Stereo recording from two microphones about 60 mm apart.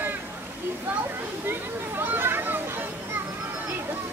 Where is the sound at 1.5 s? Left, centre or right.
Right.